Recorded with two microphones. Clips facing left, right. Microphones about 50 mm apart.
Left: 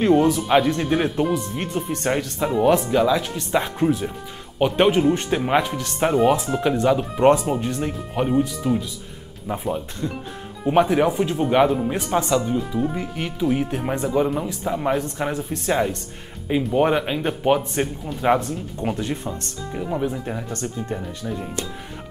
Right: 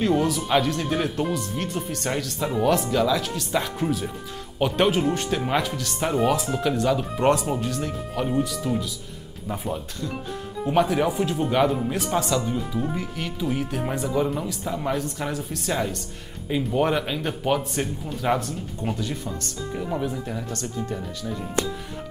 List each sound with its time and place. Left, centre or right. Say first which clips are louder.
0.0 s speech: left 5 dB; left
10.7 s speech: left 4 dB; centre
12.4 s speech: left 4 dB; centre
18.9 s speech: left 3 dB; left
19.7 s speech: left 3 dB; centre
20.1 s speech: left 2 dB; left